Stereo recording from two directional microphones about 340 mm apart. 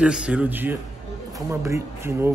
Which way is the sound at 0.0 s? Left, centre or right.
Centre.